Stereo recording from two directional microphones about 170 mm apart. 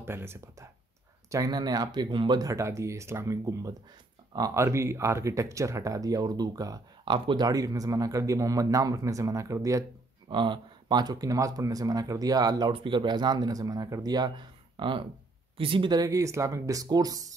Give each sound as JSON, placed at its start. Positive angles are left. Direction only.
{"t": 0.0, "sound": "speech", "side_deg": -15}